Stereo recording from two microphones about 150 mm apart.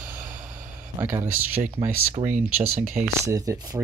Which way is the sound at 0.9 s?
20° right (ahead or behind).